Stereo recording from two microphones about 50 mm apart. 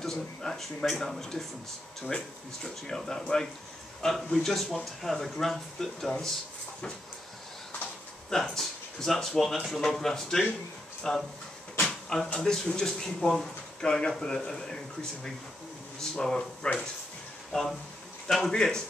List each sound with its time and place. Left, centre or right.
0.0 s speech: centre
8.3 s speech: centre
11.8 s a sound: centre
12.4 s speech: centre
16.0 s speech: centre
17.5 s speech: centre